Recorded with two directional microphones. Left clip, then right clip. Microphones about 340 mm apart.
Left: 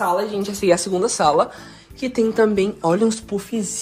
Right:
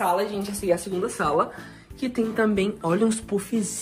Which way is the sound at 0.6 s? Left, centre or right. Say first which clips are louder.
Left 7 dB; left.